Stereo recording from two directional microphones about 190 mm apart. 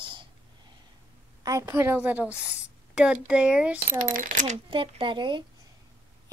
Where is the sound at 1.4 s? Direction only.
15° right (ahead or behind).